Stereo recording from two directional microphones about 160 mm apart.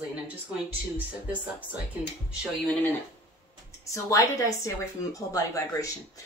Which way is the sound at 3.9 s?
20° left (ahead or behind).